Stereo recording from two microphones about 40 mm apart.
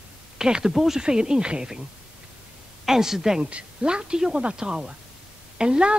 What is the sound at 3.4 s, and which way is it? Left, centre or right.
Speech, right.